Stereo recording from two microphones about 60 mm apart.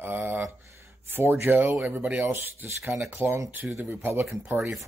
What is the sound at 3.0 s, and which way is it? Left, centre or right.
Speech, right.